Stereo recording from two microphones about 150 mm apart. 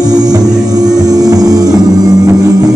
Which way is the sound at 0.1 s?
25° right (ahead or behind).